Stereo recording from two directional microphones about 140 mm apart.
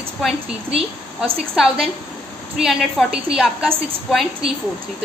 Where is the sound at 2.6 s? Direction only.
Centre (ahead or behind).